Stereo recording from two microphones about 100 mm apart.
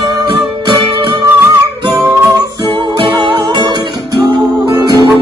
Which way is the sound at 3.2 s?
50° right (ahead or behind).